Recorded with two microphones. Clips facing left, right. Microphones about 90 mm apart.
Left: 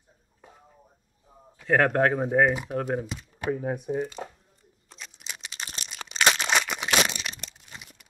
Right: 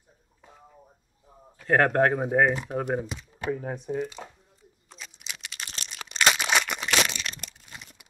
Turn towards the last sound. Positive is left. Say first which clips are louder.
# left 1 dB
turn(degrees=10)  # may be behind; listen again after turning